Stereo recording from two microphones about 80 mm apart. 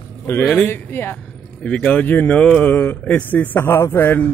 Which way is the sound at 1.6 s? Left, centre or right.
Centre.